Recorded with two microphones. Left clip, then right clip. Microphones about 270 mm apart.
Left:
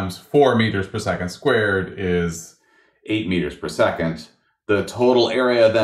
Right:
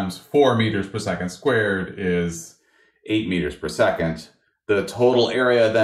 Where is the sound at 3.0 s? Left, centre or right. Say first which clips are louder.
Even; left.